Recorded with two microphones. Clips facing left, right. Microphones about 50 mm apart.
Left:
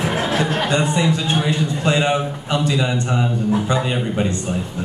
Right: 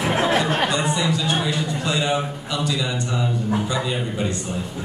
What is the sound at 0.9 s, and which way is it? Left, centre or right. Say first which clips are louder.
A man's voice: left 3 dB; left.